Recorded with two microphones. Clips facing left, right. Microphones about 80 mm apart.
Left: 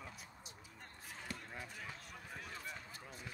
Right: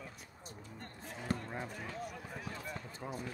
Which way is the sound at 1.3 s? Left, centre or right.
Right.